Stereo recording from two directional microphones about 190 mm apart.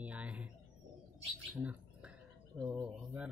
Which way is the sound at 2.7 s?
5° right (ahead or behind).